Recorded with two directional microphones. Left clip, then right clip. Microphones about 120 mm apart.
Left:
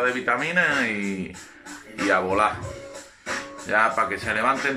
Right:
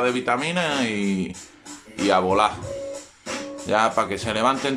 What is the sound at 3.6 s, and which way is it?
Speech, 25° right (ahead or behind).